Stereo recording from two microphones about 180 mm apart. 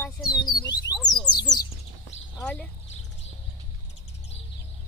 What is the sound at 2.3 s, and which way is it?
Speech, 5° left (ahead or behind).